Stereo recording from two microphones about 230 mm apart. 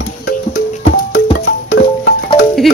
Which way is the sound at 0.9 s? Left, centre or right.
Left.